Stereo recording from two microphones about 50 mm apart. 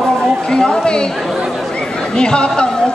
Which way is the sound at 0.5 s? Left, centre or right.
Centre.